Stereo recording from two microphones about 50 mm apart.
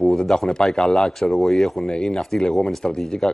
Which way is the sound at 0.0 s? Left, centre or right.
Centre.